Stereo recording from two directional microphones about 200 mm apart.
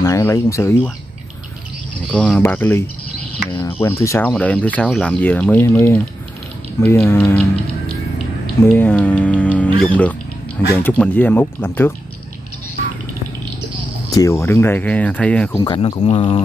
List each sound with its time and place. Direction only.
0.0 s speech: 15° left (ahead or behind)
2.0 s speech: centre (ahead or behind)
3.8 s speech: 15° left (ahead or behind)
8.6 s speech: 10° left (ahead or behind)
14.1 s speech: 15° left (ahead or behind)
15.6 s speech: 25° left (ahead or behind)